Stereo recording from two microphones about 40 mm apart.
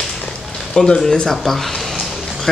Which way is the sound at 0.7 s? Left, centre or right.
Centre.